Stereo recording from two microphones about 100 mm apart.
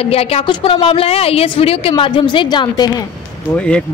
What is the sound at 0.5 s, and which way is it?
A woman's voice, 60° left (ahead or behind).